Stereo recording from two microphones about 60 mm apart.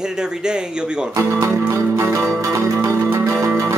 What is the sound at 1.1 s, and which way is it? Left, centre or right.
Speech, right.